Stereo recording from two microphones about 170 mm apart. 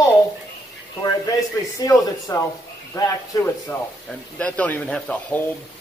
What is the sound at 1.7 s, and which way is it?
A man's voice, 20° left (ahead or behind).